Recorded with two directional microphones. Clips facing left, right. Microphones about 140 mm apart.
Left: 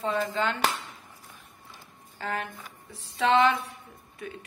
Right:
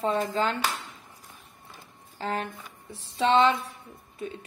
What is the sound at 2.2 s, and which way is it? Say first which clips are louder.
A woman's voice: right 2 dB; 30° right (ahead or behind).